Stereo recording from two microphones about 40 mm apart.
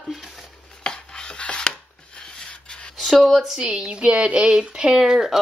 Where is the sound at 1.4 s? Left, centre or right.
Left.